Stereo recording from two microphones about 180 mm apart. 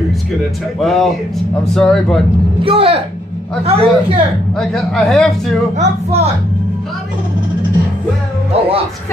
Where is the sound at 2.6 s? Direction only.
30° right (ahead or behind).